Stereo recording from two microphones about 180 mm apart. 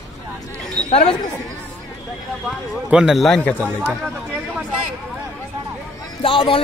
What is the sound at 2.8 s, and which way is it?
Speech, 5° right (ahead or behind).